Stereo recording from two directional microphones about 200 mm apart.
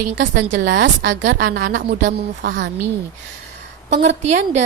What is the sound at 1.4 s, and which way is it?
A woman's voice, 45° right (ahead or behind).